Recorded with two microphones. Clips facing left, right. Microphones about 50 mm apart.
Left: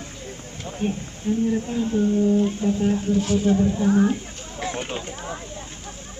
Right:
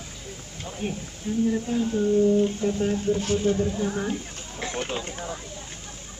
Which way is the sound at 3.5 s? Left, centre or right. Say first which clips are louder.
Left 7 dB; centre.